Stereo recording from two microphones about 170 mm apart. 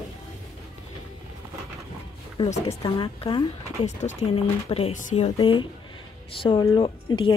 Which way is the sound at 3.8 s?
45° left (ahead or behind).